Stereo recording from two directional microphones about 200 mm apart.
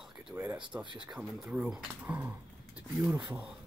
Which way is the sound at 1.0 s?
Centre (ahead or behind).